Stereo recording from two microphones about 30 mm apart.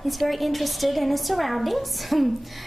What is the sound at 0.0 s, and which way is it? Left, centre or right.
A woman's voice, centre.